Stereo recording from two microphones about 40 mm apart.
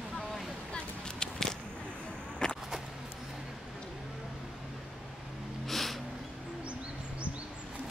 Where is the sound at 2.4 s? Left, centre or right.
Centre.